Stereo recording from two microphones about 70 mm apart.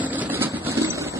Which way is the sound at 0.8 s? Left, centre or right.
Right.